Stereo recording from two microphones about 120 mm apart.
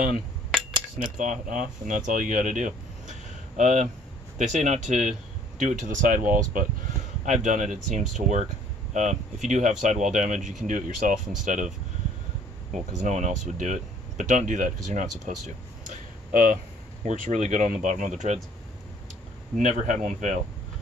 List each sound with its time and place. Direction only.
0.9 s speech: 90° right
13.0 s speech: 80° right
19.5 s speech: 90° right